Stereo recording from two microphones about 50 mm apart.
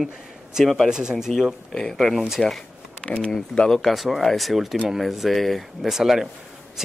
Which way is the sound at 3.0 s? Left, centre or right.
Left.